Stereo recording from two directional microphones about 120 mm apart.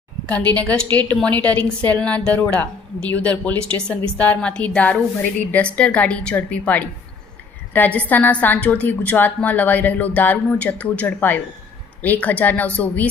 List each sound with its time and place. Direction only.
0.3 s a woman's voice: 10° left (ahead or behind)
0.8 s a woman's voice: 40° right (ahead or behind)
1.1 s a woman's voice: 10° left (ahead or behind)